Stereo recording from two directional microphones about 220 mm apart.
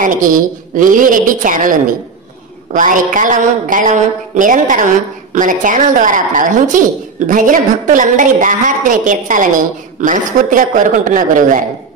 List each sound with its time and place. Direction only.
0.0 s a woman's voice: 35° right (ahead or behind)